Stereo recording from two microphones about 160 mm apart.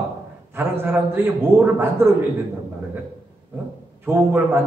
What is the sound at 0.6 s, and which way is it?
A man's voice, 15° right (ahead or behind).